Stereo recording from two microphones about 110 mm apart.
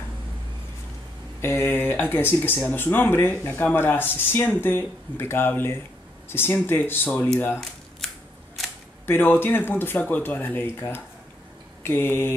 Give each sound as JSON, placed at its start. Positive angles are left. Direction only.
{"t": 1.4, "sound": "speech", "side_deg": 20}
{"t": 9.0, "sound": "speech", "side_deg": 20}